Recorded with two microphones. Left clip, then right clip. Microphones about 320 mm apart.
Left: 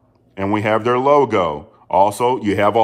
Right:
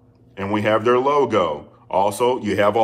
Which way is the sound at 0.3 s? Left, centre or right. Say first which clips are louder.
Left 2 dB; left.